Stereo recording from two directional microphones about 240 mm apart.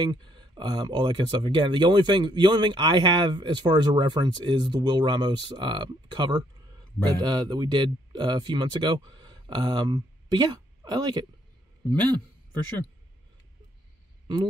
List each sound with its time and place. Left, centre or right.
0.0 s speech: centre
14.2 s speech: centre